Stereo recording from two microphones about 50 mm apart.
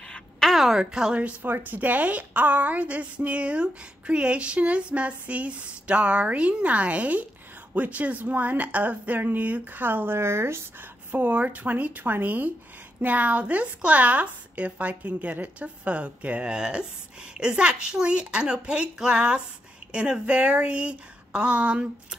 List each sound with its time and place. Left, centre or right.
0.1 s a sound: centre
0.6 s a woman's voice: centre
1.4 s a woman's voice: right
10.8 s a woman's voice: right